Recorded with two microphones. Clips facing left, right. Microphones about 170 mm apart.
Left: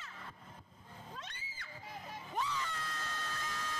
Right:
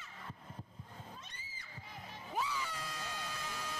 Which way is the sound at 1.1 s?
80° left.